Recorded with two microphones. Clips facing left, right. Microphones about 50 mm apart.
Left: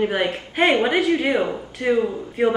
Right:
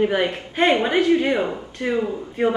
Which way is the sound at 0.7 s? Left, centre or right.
Centre.